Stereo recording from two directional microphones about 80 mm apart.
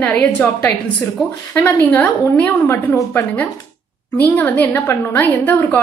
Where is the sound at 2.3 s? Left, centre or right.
Left.